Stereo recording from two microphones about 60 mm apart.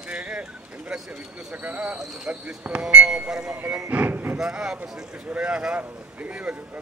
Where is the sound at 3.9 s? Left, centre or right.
Right.